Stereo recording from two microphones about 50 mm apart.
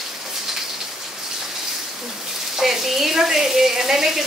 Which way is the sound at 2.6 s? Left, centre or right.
Centre.